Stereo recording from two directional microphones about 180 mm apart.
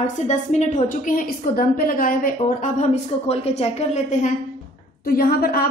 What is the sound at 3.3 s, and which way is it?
A woman's voice, 35° left (ahead or behind).